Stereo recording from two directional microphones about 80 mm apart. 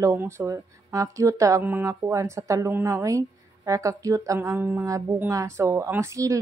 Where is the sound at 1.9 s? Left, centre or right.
Right.